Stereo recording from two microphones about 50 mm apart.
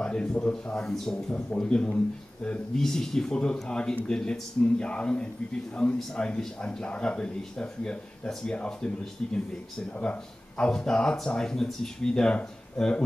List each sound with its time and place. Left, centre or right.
0.0 s speech: centre